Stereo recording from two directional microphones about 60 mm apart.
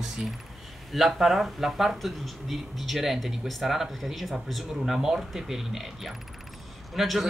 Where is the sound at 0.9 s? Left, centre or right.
Centre.